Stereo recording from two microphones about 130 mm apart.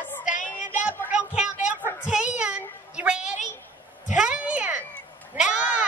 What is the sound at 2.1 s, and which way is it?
Child singing, 5° right (ahead or behind).